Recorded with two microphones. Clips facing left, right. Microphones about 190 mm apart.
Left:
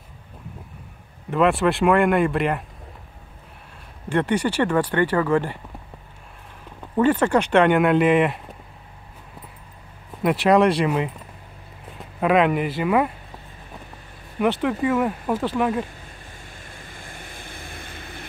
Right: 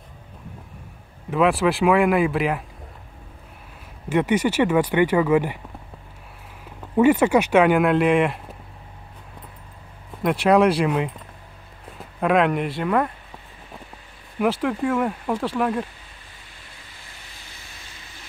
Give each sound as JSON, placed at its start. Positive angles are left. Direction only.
{"t": 1.3, "sound": "speech", "side_deg": 0}
{"t": 4.1, "sound": "speech", "side_deg": -10}
{"t": 7.0, "sound": "speech", "side_deg": -10}
{"t": 10.2, "sound": "speech", "side_deg": 0}
{"t": 14.4, "sound": "speech", "side_deg": 0}
{"t": 16.6, "sound": "vehicle", "side_deg": 50}